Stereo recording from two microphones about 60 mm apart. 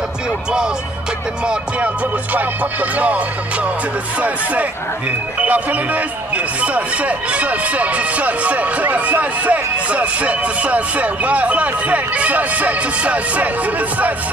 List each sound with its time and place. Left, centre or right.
2.3 s speech: right
5.4 s speech: right